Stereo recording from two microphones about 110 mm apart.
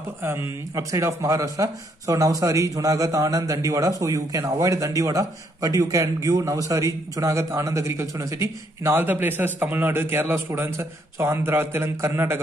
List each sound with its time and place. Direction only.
0.2 s speech: 20° right (ahead or behind)